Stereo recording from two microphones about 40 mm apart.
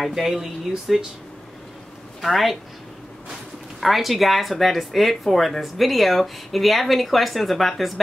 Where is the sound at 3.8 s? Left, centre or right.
Centre.